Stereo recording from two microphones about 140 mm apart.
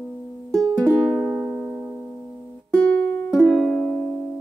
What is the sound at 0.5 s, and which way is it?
Music, 20° right (ahead or behind).